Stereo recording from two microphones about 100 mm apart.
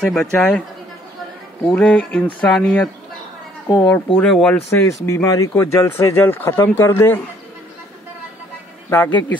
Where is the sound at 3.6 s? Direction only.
50° left (ahead or behind).